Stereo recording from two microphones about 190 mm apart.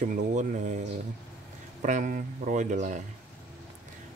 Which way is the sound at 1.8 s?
40° right (ahead or behind).